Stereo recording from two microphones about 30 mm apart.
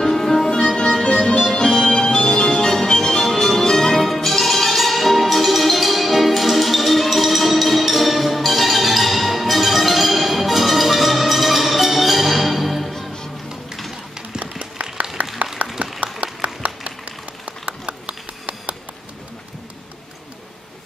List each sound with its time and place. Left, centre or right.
0.0 s music: centre
0.5 s music: left; by 12.9 s centre
14.6 s applause: right
15.6 s a sound: right
16.0 s clapping: right
17.8 s a sound: right